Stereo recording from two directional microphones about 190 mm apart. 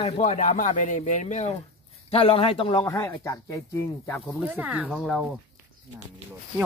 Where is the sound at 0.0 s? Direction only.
35° left (ahead or behind).